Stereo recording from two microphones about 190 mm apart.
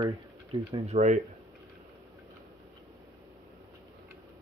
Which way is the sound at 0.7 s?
35° right (ahead or behind).